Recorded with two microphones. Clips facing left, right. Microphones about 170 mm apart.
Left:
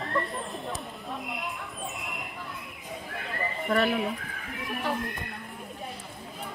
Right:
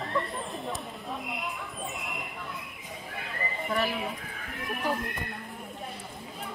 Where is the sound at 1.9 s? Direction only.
Centre (ahead or behind).